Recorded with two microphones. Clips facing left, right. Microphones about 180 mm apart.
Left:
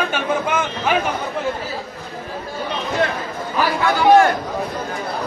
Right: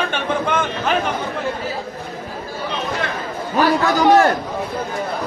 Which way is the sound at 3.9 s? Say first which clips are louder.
Left 3 dB; 40° right (ahead or behind).